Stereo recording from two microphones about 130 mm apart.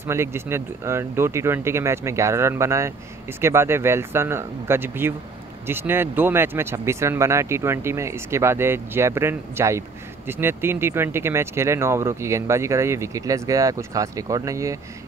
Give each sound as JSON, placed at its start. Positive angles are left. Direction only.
{"t": 0.0, "sound": "speech", "side_deg": -20}